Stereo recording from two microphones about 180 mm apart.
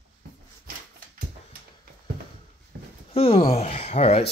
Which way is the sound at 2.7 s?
60° right (ahead or behind).